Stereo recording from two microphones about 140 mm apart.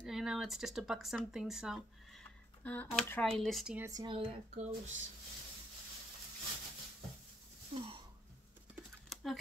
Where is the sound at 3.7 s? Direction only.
20° right (ahead or behind).